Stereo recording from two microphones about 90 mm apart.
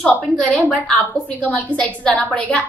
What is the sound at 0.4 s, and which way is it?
A woman's voice, 15° left (ahead or behind).